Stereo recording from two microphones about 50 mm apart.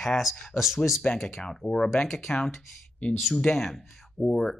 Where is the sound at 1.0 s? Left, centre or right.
Left.